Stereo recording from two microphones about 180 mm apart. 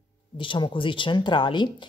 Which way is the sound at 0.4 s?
30° left (ahead or behind).